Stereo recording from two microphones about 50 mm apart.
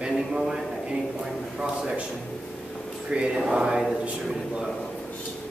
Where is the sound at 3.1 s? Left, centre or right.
Centre.